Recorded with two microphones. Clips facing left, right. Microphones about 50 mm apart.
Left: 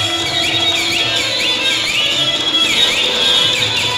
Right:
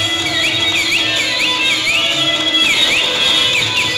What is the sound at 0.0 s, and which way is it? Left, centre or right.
Music, right.